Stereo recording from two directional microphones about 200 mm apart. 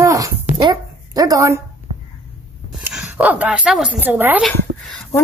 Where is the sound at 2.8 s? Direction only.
5° right (ahead or behind).